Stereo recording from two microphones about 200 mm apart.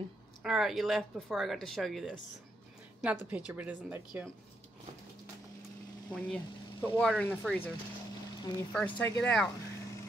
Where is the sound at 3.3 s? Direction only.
5° right (ahead or behind).